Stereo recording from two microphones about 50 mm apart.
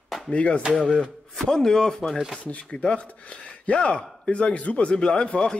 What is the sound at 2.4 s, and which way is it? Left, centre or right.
Speech, left.